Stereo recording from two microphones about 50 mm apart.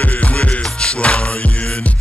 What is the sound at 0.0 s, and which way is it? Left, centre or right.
Music, left.